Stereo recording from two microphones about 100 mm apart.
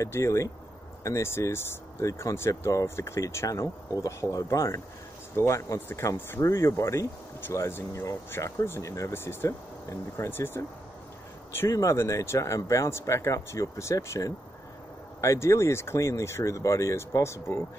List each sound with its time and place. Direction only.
0.0 s speech: 30° left (ahead or behind)